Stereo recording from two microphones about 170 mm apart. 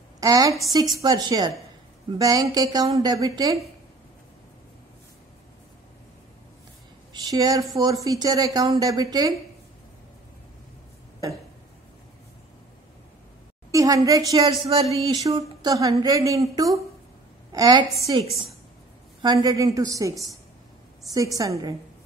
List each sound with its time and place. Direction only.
0.2 s a woman's voice: 20° right (ahead or behind)
7.2 s a woman's voice: 25° right (ahead or behind)
13.7 s a woman's voice: 20° right (ahead or behind)
19.2 s a woman's voice: 25° right (ahead or behind)